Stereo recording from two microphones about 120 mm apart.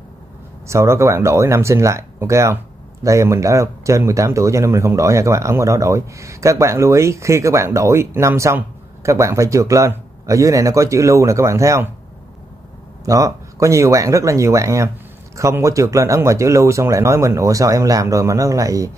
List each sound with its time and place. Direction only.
0.7 s speech: 25° right (ahead or behind)
13.0 s speech: 25° right (ahead or behind)